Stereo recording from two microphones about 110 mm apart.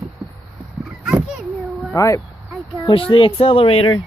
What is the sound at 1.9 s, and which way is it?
Speech, 30° left (ahead or behind).